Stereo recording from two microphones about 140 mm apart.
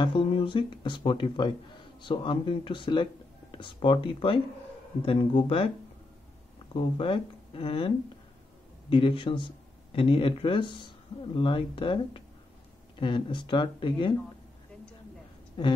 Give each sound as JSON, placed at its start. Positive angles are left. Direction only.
{"t": 0.0, "sound": "speech", "side_deg": 35}
{"t": 6.7, "sound": "speech", "side_deg": 40}
{"t": 8.9, "sound": "speech", "side_deg": 40}